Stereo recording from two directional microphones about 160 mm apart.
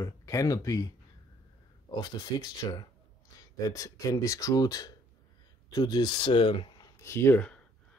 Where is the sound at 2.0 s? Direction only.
25° left (ahead or behind).